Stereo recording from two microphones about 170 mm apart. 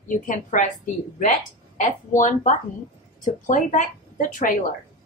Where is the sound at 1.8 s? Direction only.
50° left (ahead or behind).